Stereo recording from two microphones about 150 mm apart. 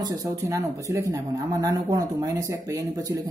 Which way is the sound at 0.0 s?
25° right (ahead or behind).